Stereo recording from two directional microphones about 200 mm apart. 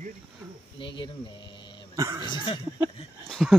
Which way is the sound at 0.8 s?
25° left (ahead or behind).